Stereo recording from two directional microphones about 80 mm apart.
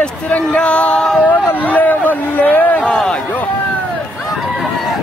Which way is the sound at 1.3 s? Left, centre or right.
Left.